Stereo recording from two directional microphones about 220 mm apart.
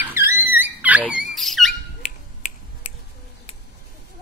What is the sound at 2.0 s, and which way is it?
Finger snapping, 35° left (ahead or behind).